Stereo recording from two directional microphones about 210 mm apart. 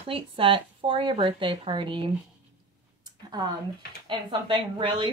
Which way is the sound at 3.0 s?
20° right (ahead or behind).